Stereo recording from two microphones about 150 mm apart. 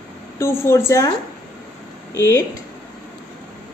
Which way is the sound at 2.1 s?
20° left (ahead or behind).